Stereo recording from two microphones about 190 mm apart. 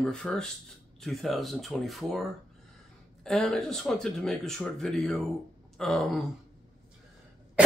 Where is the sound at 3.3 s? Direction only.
Centre (ahead or behind).